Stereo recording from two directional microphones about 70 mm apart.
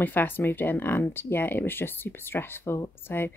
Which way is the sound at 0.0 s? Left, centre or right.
Left.